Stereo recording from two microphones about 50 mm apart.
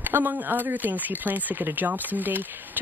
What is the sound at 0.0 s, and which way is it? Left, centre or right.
A man's voice, right.